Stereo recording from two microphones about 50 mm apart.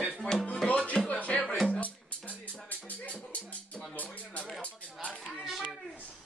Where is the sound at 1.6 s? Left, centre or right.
Left.